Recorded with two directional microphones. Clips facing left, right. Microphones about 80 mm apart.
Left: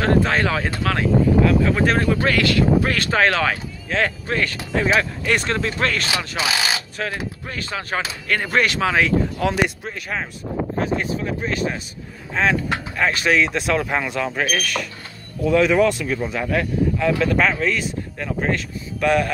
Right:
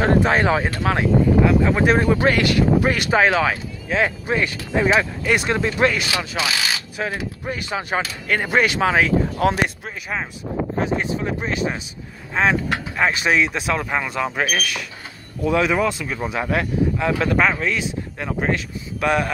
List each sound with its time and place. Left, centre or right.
0.0 s speech: centre
11.0 s speech: right; by 14.9 s centre
15.4 s speech: right
16.3 s speech: right